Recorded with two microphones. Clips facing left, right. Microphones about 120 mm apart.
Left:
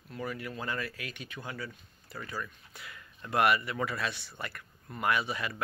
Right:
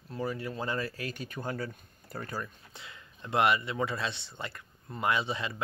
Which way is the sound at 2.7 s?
25° right (ahead or behind).